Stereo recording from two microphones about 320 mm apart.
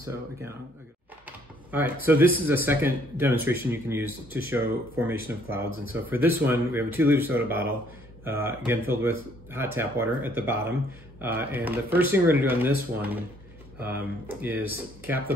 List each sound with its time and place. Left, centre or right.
1.7 s speech: centre